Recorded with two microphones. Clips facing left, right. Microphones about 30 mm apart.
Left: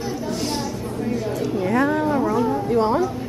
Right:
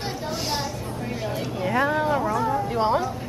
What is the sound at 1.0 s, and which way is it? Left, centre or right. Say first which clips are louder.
Speech: left 5 dB; centre.